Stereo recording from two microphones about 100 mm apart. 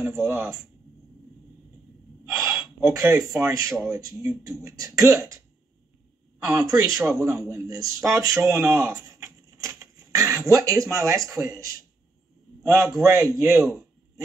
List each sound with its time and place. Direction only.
2.2 s gasp: 30° right (ahead or behind)
3.3 s speech: 30° right (ahead or behind)
6.5 s speech: 35° right (ahead or behind)